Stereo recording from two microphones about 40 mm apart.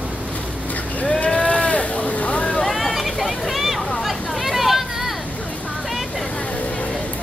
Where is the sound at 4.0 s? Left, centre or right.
Centre.